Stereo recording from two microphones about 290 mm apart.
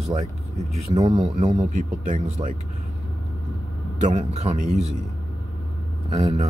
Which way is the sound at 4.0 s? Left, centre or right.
Right.